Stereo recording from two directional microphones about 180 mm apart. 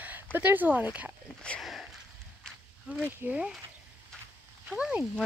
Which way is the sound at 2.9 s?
10° right (ahead or behind).